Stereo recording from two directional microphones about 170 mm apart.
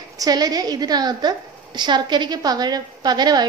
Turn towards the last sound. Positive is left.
turn(degrees=-25)  # may be behind; listen again after turning